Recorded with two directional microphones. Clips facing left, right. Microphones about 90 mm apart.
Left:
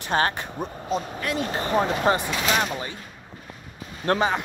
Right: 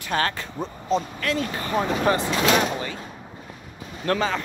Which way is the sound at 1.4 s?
25° left (ahead or behind).